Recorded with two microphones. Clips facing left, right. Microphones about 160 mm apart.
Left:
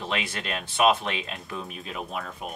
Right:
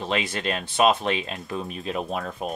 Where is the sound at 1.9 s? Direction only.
30° right (ahead or behind).